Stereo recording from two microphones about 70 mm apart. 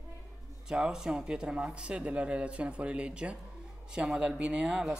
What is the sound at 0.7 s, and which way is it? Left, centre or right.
Speech, centre.